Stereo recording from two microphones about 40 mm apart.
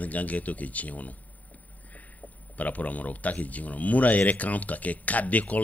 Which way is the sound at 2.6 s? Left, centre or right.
Left.